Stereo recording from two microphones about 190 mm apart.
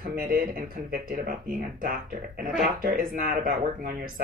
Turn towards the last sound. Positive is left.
turn(degrees=-50)  # may be behind; listen again after turning